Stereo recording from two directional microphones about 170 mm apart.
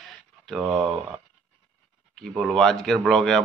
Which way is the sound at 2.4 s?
Centre (ahead or behind).